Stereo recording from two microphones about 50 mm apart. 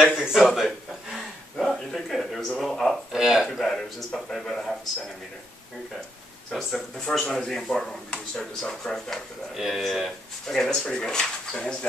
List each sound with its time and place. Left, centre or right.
0.1 s speech: centre
0.5 s a sound: centre
2.6 s speech: centre
3.1 s a man's voice: centre
3.4 s a man's voice: centre
6.5 s a man's voice: centre
7.1 s speech: centre
9.5 s speech: centre